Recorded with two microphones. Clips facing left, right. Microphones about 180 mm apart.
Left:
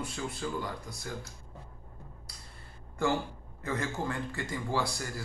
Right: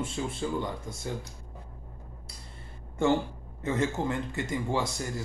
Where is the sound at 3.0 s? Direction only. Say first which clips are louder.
Right 5 dB; 25° right (ahead or behind).